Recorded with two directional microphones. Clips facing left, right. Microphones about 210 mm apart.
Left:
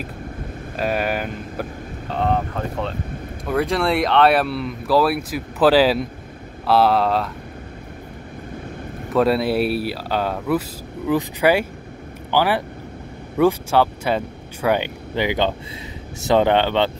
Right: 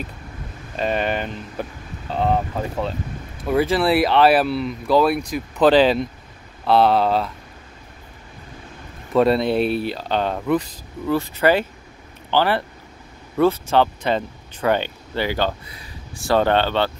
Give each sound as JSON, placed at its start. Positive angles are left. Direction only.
{"t": 0.7, "sound": "speech", "side_deg": 5}
{"t": 9.1, "sound": "speech", "side_deg": 5}
{"t": 11.1, "sound": "speech", "side_deg": 15}